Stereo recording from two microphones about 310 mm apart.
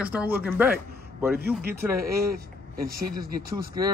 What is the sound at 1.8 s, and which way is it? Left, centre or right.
Speech, centre.